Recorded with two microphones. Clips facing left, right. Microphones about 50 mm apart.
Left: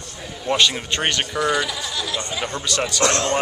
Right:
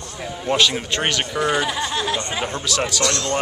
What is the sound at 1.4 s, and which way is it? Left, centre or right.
Speech, right.